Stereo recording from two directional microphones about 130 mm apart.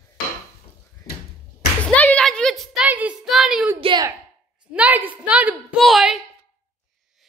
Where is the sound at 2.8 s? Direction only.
10° right (ahead or behind).